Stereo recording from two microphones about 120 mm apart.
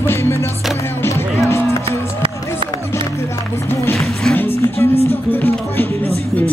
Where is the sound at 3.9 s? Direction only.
5° left (ahead or behind).